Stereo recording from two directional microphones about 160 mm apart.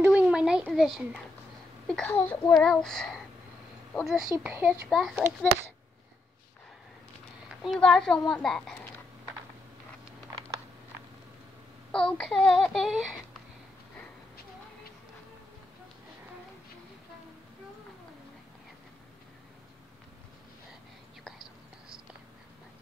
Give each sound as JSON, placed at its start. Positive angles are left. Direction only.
{"t": 0.0, "sound": "a sound", "side_deg": -5}
{"t": 0.7, "sound": "child singing", "side_deg": 0}
{"t": 2.1, "sound": "a child's voice", "side_deg": 15}
{"t": 2.5, "sound": "child singing", "side_deg": 5}
{"t": 4.4, "sound": "speech", "side_deg": -5}
{"t": 4.8, "sound": "child singing", "side_deg": 0}
{"t": 7.4, "sound": "a woman's voice", "side_deg": 0}
{"t": 8.3, "sound": "child singing", "side_deg": 5}
{"t": 11.9, "sound": "child singing", "side_deg": 5}
{"t": 21.2, "sound": "whispering", "side_deg": 0}